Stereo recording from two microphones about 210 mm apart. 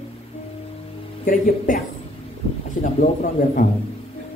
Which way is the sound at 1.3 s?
40° left (ahead or behind).